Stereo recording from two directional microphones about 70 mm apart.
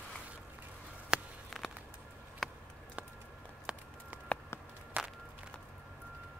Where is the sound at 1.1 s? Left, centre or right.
Centre.